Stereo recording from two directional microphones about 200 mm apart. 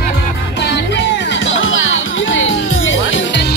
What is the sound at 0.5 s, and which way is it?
Music, 60° left (ahead or behind).